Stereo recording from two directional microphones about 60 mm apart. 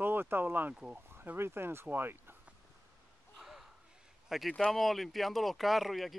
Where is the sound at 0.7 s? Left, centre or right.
Centre.